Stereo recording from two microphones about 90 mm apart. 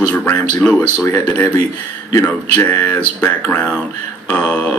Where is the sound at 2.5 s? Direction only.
20° left (ahead or behind).